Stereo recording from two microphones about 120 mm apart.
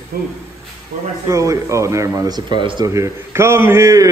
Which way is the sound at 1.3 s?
25° right (ahead or behind).